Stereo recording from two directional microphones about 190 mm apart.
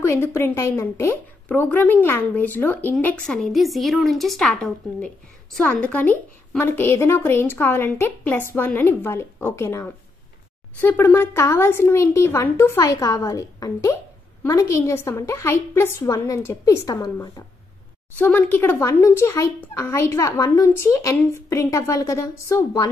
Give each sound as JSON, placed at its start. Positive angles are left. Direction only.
{"t": 0.0, "sound": "a woman's voice", "side_deg": 15}